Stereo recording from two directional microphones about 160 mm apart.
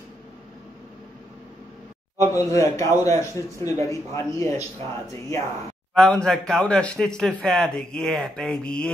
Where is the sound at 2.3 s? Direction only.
20° left (ahead or behind).